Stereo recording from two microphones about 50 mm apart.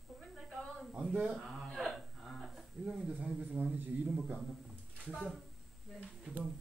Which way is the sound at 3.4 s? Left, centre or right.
Right.